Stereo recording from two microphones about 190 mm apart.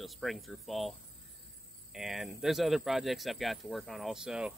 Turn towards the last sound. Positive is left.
turn(degrees=-5)  # may be behind; listen again after turning